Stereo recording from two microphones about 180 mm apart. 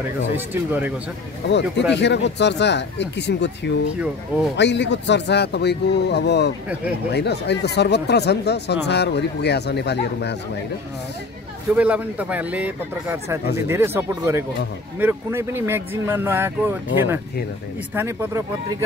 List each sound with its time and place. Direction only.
0.5 s speech: 10° right (ahead or behind)
1.9 s speech: 75° left (ahead or behind)
11.7 s speech: 10° right (ahead or behind)